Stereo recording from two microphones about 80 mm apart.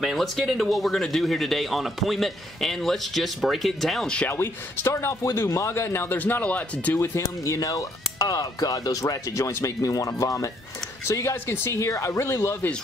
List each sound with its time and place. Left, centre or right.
0.0 s speech: centre
4.3 s speech: left
7.0 s speech: left